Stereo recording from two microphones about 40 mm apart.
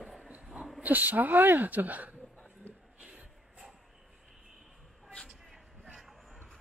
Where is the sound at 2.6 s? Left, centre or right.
Left.